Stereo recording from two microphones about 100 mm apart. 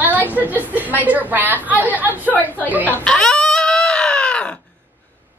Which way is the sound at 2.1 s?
15° left (ahead or behind).